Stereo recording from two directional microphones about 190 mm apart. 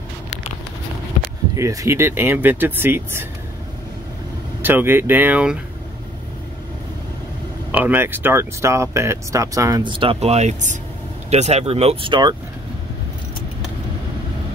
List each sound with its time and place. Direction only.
1.5 s speech: 15° right (ahead or behind)
4.6 s speech: 10° right (ahead or behind)
7.7 s speech: 10° right (ahead or behind)